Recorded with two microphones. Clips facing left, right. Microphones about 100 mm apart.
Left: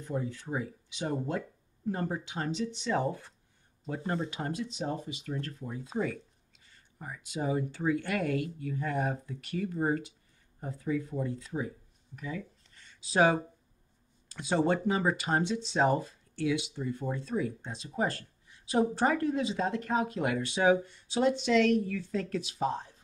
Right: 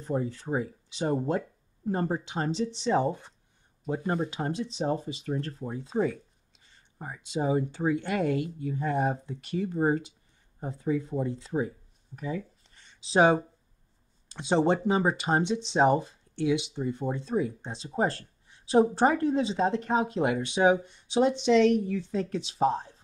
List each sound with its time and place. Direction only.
0.0 s speech: 35° right (ahead or behind)
7.0 s speech: 30° right (ahead or behind)
12.2 s a sound: 30° right (ahead or behind)
14.3 s speech: 25° right (ahead or behind)